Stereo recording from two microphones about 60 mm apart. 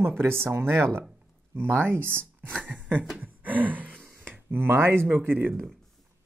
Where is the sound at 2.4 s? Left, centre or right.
Right.